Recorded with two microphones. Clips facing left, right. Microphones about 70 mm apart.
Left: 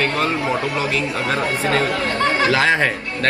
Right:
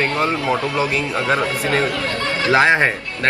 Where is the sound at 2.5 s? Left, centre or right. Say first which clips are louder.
Right 2 dB; right.